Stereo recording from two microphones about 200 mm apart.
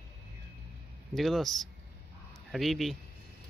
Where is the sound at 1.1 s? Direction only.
Centre (ahead or behind).